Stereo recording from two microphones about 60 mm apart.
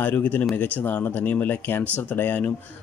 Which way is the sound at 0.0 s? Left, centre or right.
Left.